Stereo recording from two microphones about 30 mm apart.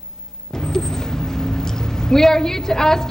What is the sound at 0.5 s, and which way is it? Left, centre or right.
Speech, centre.